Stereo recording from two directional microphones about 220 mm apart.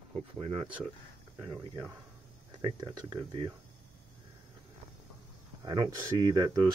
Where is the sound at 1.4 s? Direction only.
10° right (ahead or behind).